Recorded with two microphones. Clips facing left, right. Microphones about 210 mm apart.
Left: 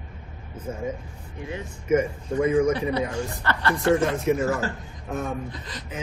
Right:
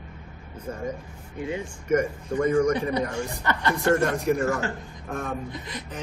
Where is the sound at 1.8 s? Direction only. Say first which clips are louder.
Left 2 dB; 5° left (ahead or behind).